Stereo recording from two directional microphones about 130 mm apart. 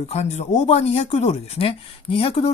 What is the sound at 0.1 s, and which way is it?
Speech, 60° left (ahead or behind).